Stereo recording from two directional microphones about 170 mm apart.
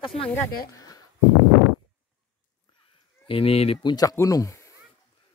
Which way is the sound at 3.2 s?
30° left (ahead or behind).